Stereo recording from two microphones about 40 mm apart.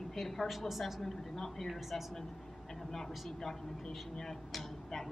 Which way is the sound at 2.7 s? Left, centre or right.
Centre.